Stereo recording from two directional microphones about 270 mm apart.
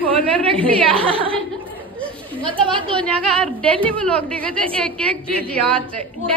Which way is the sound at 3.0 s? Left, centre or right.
Centre.